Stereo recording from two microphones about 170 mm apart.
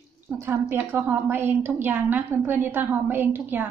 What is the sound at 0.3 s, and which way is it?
A woman's voice, 15° right (ahead or behind).